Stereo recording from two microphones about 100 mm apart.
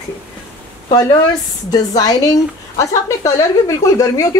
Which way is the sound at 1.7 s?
40° left (ahead or behind).